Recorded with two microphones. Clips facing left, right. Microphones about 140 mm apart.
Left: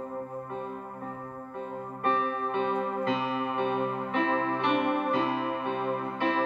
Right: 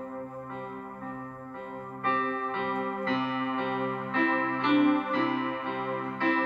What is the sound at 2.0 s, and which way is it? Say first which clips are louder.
Music: left 2 dB; 15° left (ahead or behind).